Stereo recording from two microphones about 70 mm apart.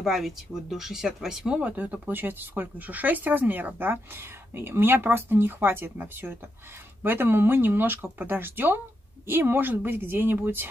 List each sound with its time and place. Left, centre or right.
0.0 s speech: centre
1.6 s speech: right